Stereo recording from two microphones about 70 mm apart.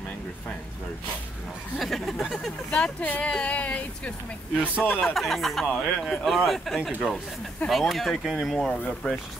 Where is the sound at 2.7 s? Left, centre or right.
Left.